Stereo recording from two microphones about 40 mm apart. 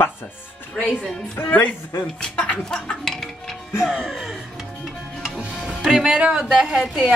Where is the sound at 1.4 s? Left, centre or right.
Left.